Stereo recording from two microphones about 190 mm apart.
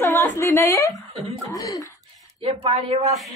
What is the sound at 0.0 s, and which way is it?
A woman's voice, 15° left (ahead or behind).